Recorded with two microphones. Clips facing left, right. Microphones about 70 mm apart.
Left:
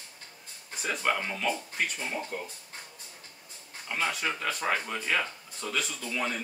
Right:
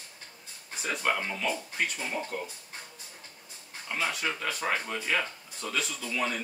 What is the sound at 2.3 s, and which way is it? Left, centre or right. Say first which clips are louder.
Speech: right 1 dB; left.